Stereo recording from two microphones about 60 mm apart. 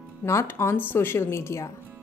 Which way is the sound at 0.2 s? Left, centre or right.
Left.